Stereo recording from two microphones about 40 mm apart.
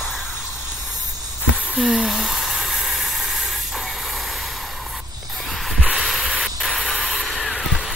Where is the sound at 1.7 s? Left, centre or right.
Centre.